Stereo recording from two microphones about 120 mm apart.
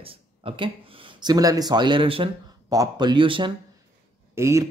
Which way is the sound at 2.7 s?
35° right (ahead or behind).